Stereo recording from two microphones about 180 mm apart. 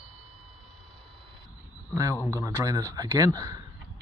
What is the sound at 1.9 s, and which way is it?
Speech, 20° right (ahead or behind).